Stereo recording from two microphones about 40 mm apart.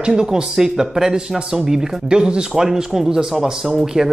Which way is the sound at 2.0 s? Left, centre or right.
Right.